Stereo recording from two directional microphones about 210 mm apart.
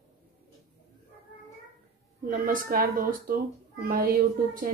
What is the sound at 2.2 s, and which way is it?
Speech, 40° right (ahead or behind).